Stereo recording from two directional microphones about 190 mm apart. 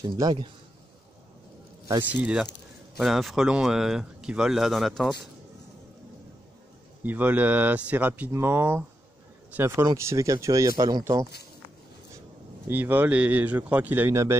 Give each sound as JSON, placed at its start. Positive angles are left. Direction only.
{"t": 0.0, "sound": "a man's voice", "side_deg": -25}
{"t": 2.0, "sound": "speech", "side_deg": -10}
{"t": 7.0, "sound": "a man's voice", "side_deg": -10}
{"t": 12.6, "sound": "speech", "side_deg": -10}